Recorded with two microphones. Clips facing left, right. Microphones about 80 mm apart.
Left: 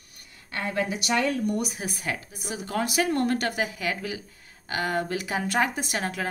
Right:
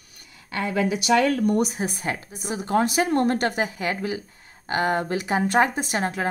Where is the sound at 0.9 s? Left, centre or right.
Right.